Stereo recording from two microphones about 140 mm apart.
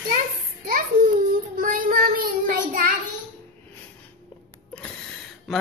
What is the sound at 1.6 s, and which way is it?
Child singing, 80° right.